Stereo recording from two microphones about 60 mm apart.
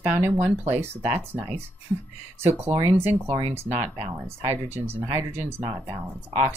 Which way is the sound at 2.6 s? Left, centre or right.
Right.